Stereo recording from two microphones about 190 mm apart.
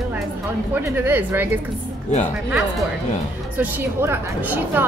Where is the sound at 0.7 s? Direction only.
10° right (ahead or behind).